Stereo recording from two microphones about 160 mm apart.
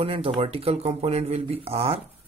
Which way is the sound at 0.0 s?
35° right (ahead or behind).